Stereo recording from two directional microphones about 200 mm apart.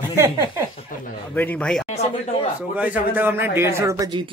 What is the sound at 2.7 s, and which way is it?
A man's voice, 10° right (ahead or behind).